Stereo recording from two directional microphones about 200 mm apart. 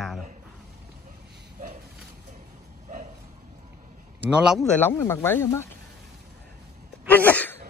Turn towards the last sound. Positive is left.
turn(degrees=10)  # may be behind; listen again after turning